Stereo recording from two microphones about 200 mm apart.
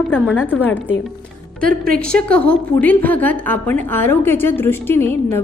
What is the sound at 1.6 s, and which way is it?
Speech, 45° right (ahead or behind).